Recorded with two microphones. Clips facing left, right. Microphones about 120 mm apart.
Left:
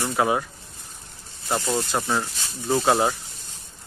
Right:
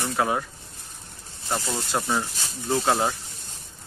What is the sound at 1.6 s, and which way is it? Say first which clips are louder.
Speech: left 5 dB; 20° left (ahead or behind).